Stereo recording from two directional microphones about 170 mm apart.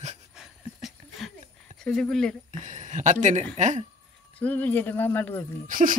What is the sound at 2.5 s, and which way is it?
Speech, 45° right (ahead or behind).